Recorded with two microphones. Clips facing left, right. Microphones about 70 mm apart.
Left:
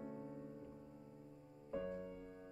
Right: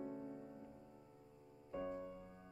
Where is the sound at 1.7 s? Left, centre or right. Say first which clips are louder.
Left 1 dB; centre.